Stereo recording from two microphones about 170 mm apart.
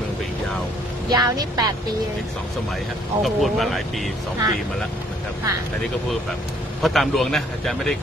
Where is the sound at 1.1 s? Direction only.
25° right (ahead or behind).